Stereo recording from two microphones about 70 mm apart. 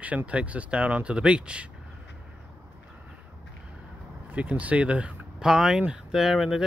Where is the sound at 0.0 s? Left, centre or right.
Right.